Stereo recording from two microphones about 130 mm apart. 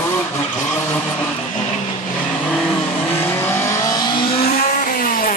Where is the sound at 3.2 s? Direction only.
15° left (ahead or behind); by 4.2 s 30° left (ahead or behind).